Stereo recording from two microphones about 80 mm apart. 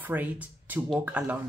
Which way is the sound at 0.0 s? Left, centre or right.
Right.